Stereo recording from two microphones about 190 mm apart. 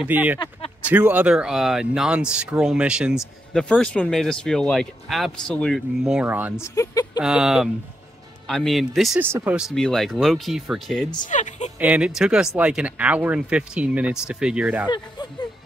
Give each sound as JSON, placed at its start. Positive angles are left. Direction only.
{"t": 0.0, "sound": "speech", "side_deg": -10}
{"t": 6.6, "sound": "speech", "side_deg": 15}
{"t": 7.2, "sound": "speech", "side_deg": -5}
{"t": 11.2, "sound": "a sound", "side_deg": 40}
{"t": 11.8, "sound": "speech", "side_deg": -5}